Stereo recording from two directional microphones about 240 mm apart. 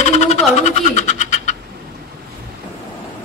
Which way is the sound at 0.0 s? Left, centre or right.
Left.